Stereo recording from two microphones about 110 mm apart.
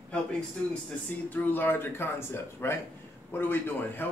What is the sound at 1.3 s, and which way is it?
Speech, 15° left (ahead or behind).